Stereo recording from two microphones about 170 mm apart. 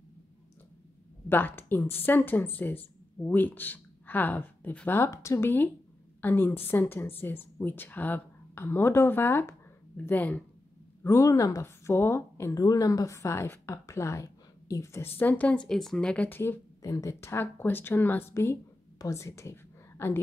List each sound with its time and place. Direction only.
1.3 s speech: 10° left (ahead or behind)